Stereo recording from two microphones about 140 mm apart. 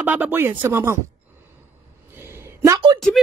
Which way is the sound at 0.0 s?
15° right (ahead or behind).